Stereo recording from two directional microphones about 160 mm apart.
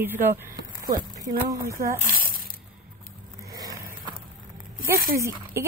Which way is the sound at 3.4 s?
20° right (ahead or behind).